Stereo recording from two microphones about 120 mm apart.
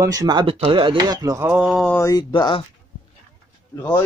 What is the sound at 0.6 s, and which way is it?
Speech, 50° right (ahead or behind).